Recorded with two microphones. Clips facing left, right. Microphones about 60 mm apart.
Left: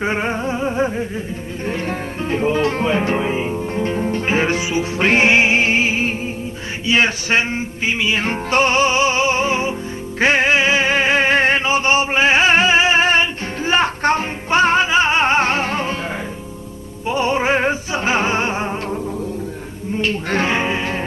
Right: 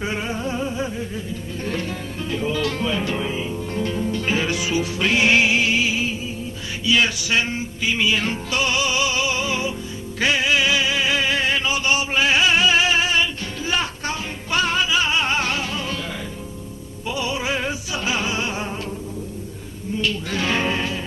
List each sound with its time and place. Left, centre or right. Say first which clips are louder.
0.0 s music: left 5 dB; left
8.3 s music: left 6 dB; left
17.0 s music: left 7 dB; left
20.0 s a sound: left 5 dB; left
20.4 s music: left 3 dB; left